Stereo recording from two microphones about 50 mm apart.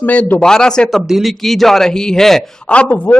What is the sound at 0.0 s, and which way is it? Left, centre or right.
Speech, left.